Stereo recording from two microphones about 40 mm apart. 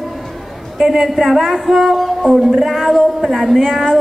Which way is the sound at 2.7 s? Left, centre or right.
Centre.